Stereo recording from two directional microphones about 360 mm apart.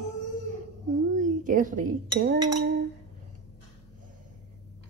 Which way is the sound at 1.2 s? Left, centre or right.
Right.